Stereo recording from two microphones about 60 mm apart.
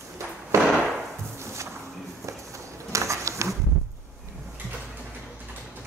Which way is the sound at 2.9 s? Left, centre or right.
Right.